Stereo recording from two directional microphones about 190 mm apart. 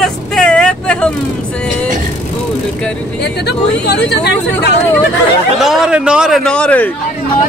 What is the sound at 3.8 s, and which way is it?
Speech, 60° left (ahead or behind).